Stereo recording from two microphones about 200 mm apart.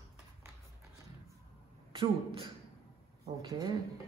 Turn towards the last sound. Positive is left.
turn(degrees=-20)  # may be behind; listen again after turning